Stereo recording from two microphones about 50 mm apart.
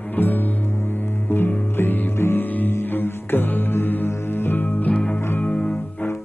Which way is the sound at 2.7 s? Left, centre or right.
Left.